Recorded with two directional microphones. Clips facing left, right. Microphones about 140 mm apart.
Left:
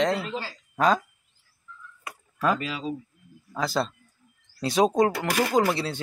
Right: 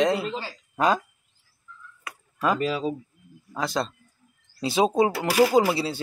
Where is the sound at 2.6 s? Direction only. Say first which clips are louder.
Right 7 dB; 45° right (ahead or behind).